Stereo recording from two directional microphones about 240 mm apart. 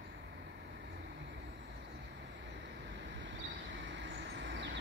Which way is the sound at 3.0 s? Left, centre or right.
Right.